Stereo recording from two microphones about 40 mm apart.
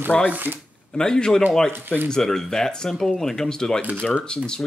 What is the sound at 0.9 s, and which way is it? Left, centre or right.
Speech, centre.